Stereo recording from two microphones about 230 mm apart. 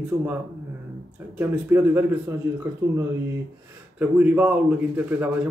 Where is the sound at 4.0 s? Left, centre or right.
Centre.